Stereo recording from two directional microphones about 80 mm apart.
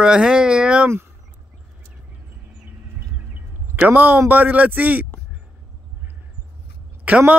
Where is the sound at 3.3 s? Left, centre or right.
Right.